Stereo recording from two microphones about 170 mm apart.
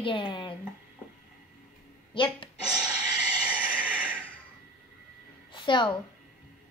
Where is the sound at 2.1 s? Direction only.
30° left (ahead or behind).